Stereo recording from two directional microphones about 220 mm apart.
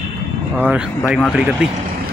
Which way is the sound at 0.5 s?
5° right (ahead or behind).